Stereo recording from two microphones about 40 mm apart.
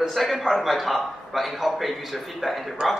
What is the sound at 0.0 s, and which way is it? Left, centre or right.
A man's voice, centre.